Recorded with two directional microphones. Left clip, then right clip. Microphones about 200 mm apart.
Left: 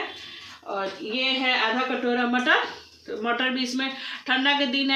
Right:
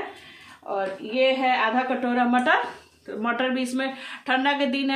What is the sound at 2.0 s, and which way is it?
Speech, 50° right (ahead or behind).